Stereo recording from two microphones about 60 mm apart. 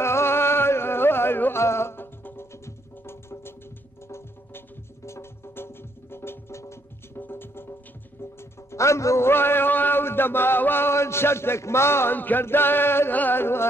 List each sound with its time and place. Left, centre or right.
0.0 s music: left